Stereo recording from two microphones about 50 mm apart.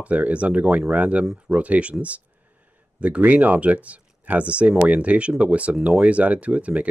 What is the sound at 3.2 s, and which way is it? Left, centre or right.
Speech, right.